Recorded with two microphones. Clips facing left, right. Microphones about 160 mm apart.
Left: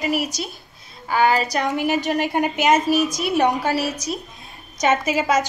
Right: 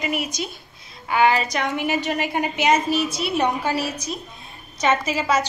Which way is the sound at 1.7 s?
40° left (ahead or behind).